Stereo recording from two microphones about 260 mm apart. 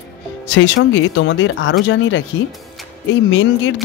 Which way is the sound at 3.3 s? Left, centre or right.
Left.